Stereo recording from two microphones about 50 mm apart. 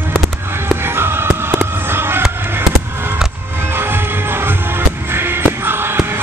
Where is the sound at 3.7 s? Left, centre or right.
Right.